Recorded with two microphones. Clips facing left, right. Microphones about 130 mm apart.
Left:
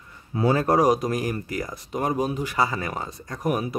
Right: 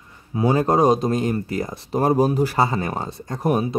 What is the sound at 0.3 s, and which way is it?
Speech, 20° right (ahead or behind).